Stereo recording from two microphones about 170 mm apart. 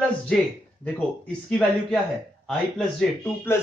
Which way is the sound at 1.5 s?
5° left (ahead or behind).